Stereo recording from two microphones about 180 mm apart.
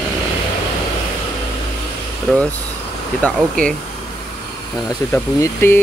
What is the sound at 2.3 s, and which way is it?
Speech, centre (ahead or behind).